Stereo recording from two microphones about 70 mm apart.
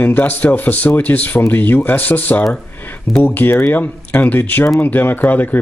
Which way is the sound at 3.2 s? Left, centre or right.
Left.